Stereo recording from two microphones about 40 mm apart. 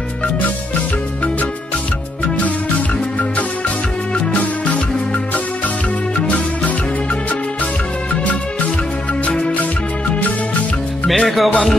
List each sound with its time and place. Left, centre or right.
4.3 s music: left
9.2 s music: left
11.2 s music: centre